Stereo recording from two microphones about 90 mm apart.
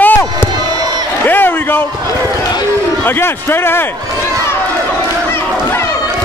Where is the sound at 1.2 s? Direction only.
20° left (ahead or behind).